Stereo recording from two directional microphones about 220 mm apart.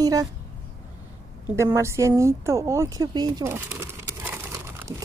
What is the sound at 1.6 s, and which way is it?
Speech, 15° right (ahead or behind).